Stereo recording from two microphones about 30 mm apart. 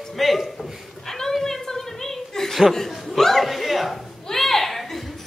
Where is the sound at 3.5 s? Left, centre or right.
Centre.